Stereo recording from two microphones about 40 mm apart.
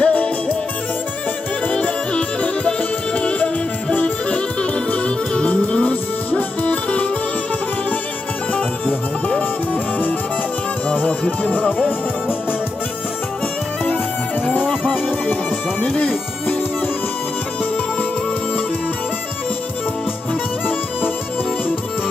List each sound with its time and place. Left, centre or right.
0.0 s music: left
1.7 s music: left
8.5 s music: left
10.9 s music: left
14.4 s music: left
15.8 s music: left